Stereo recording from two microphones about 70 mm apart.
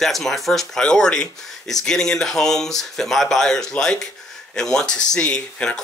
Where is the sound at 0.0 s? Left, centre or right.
Centre.